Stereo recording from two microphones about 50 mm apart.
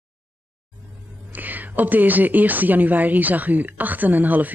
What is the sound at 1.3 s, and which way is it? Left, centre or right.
A woman's voice, right.